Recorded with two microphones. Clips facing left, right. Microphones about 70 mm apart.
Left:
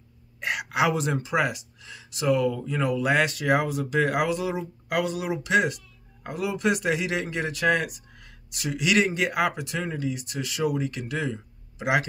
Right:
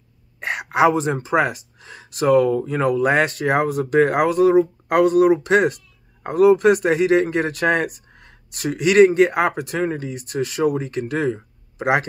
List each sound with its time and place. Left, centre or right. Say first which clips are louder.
0.4 s speech: right 7 dB; right